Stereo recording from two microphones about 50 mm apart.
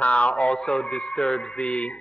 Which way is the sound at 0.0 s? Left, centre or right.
Left.